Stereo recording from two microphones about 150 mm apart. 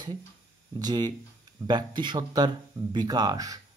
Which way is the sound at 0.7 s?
25° right (ahead or behind).